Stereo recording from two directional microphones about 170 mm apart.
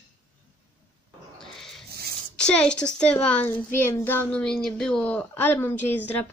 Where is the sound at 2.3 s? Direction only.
5° left (ahead or behind).